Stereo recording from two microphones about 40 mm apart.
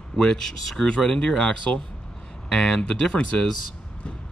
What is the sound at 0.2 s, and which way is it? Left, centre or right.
Speech, centre.